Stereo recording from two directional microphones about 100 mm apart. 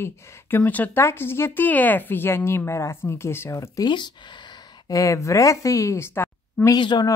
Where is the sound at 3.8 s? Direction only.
50° left (ahead or behind); by 6.7 s 25° left (ahead or behind).